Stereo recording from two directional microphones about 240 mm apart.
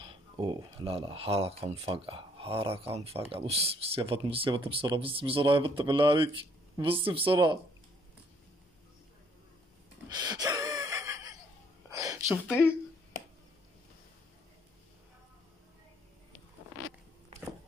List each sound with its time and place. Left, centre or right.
0.0 s speech: right
10.0 s wheeze: centre
11.9 s a sound: centre
12.4 s speech: centre